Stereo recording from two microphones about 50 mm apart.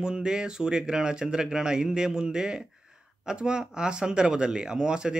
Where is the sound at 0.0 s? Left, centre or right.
Centre.